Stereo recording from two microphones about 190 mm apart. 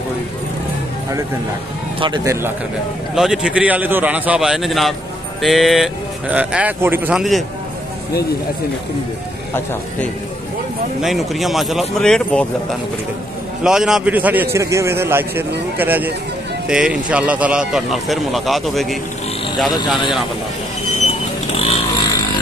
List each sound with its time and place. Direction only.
2.0 s speech: 25° right (ahead or behind)
3.2 s speech: 5° right (ahead or behind)
11.0 s speech: centre (ahead or behind)
13.7 s a man's voice: 5° right (ahead or behind)
21.1 s vehicle: 35° left (ahead or behind)